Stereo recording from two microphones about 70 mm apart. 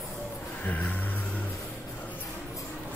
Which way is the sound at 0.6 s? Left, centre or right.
Left.